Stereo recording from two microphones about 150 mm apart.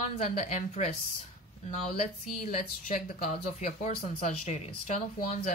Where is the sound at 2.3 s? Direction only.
60° left (ahead or behind).